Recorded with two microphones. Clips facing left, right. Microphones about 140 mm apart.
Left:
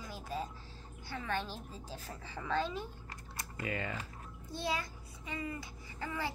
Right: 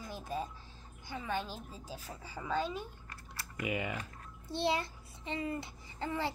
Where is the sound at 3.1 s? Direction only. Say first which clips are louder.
Left 2 dB; 25° left (ahead or behind).